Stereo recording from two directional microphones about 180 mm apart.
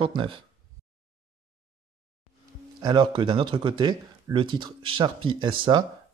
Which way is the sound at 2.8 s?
25° right (ahead or behind).